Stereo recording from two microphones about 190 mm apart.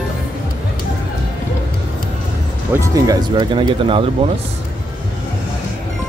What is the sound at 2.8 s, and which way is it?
Speech, 15° right (ahead or behind).